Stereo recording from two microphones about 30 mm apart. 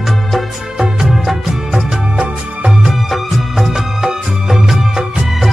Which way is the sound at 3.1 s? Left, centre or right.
Centre.